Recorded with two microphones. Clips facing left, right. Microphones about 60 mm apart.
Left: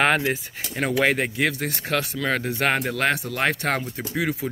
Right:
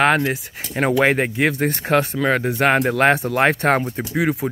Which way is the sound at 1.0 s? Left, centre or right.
Right.